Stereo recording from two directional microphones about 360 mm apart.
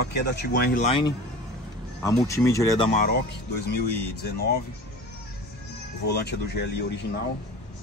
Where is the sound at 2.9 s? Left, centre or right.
Left.